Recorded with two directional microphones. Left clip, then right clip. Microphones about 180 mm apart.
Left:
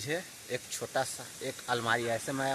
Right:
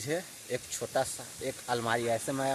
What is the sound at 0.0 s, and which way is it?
Speech, 20° right (ahead or behind).